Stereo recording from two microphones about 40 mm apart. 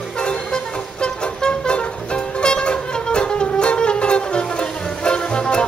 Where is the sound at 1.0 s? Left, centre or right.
Left.